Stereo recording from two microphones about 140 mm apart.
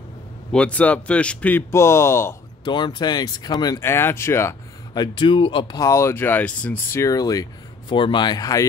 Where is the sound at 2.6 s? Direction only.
35° left (ahead or behind).